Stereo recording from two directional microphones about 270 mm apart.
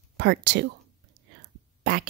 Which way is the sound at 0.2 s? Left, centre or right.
Right.